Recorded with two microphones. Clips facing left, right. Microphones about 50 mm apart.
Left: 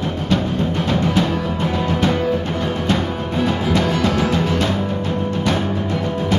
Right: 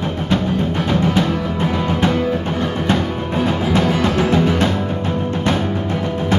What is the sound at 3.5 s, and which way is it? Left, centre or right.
Music, centre.